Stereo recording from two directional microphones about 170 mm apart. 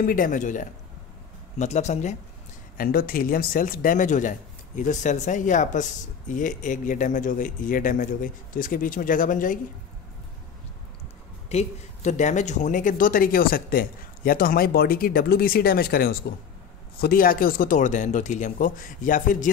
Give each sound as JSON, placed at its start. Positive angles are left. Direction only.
{"t": 0.0, "sound": "speech", "side_deg": 55}
{"t": 2.8, "sound": "speech", "side_deg": 60}
{"t": 11.4, "sound": "speech", "side_deg": 40}